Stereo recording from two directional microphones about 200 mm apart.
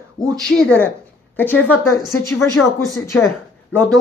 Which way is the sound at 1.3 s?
10° left (ahead or behind).